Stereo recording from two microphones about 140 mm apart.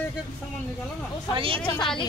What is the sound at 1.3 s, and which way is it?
Speech, 40° right (ahead or behind).